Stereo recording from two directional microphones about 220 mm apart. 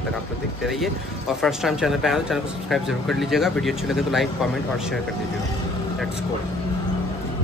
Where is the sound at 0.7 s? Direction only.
Centre (ahead or behind).